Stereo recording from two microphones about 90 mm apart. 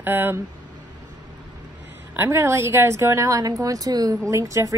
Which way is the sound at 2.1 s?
30° right (ahead or behind).